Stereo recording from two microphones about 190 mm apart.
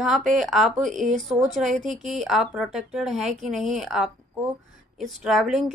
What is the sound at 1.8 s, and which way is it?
Speech, 40° right (ahead or behind).